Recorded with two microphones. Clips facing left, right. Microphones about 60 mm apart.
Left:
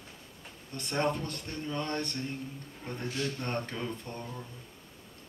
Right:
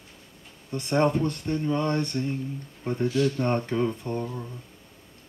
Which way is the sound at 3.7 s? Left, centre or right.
Right.